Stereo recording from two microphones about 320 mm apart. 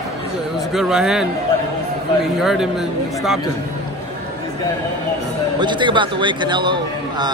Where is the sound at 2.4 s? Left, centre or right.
Centre.